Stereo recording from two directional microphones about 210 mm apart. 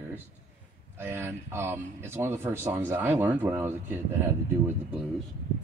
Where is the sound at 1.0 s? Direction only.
10° right (ahead or behind).